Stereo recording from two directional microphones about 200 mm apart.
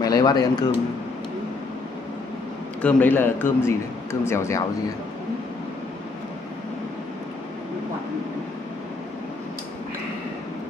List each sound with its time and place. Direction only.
0.0 s speech: 20° left (ahead or behind)
2.8 s a man's voice: 10° left (ahead or behind)